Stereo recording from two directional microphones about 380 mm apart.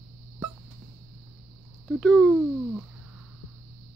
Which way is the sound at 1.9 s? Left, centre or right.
Centre.